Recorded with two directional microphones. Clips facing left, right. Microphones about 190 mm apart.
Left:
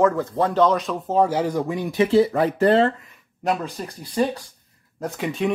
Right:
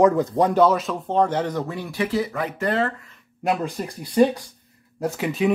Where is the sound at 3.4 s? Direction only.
15° right (ahead or behind).